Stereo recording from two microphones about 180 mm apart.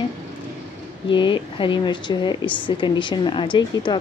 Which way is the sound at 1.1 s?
25° left (ahead or behind).